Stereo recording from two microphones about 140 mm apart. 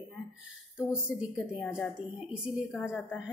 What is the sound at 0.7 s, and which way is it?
Speech, 5° right (ahead or behind).